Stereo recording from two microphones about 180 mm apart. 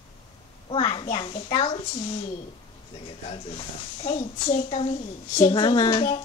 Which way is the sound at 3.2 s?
35° left (ahead or behind).